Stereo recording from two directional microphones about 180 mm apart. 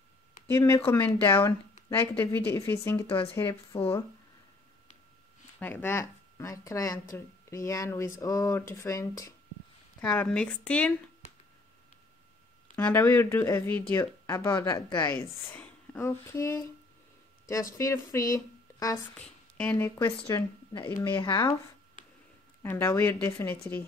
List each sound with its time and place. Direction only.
0.5 s speech: 10° left (ahead or behind)
3.7 s speech: 30° left (ahead or behind)
5.6 s speech: 10° left (ahead or behind)
10.0 s speech: 5° left (ahead or behind)
12.7 s speech: 10° left (ahead or behind)
15.5 s a woman's voice: 10° left (ahead or behind); by 21.5 s 25° left (ahead or behind)
22.6 s speech: 15° left (ahead or behind)